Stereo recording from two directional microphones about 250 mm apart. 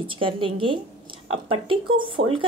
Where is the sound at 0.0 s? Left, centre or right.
Right.